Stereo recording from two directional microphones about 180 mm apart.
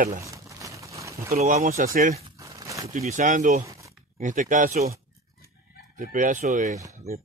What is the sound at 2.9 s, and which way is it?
Speech, 45° right (ahead or behind).